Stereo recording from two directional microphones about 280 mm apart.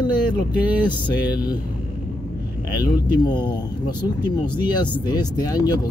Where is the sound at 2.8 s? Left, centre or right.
Centre.